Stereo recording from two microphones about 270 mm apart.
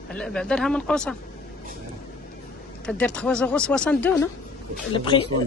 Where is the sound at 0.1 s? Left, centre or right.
Centre.